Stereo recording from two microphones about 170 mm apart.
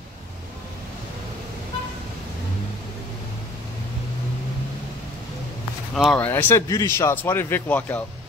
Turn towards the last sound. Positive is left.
turn(degrees=10)  # may be behind; listen again after turning